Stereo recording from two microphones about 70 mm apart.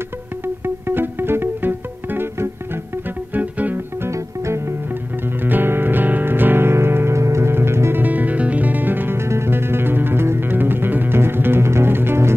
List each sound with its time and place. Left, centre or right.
0.8 s music: right
3.3 s music: right
4.0 s music: right
5.4 s music: right
8.0 s music: right